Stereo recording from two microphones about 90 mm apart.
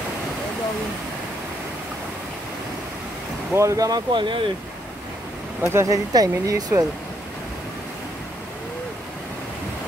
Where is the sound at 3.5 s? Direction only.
35° right (ahead or behind).